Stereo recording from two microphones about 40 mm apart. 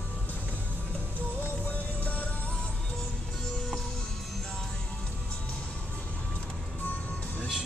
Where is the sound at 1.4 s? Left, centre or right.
Left.